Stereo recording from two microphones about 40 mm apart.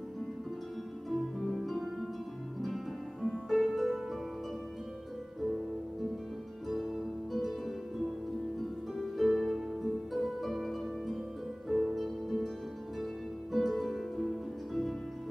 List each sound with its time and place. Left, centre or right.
1.1 s music: centre
7.3 s music: centre